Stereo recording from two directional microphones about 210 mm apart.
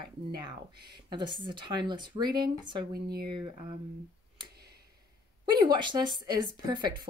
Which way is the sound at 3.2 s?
20° right (ahead or behind).